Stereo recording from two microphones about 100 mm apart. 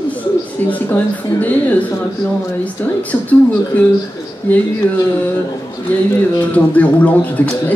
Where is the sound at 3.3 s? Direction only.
20° left (ahead or behind).